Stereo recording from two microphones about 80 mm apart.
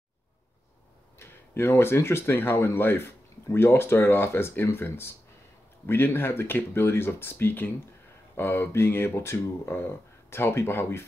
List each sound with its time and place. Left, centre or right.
1.2 s speech: left